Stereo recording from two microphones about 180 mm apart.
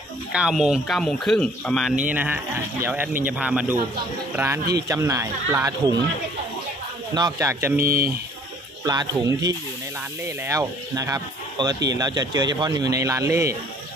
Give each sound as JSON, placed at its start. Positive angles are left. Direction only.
{"t": 0.3, "sound": "speech", "side_deg": -5}
{"t": 2.0, "sound": "speech", "side_deg": -10}
{"t": 7.2, "sound": "speech", "side_deg": -20}
{"t": 7.8, "sound": "speech", "side_deg": -55}
{"t": 8.8, "sound": "speech", "side_deg": -20}